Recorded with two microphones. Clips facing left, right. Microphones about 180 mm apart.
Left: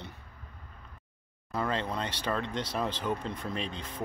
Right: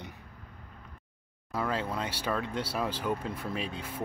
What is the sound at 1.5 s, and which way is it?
Speech, 5° right (ahead or behind).